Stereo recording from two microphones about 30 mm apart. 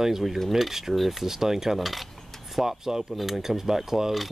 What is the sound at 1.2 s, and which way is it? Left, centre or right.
Speech, centre.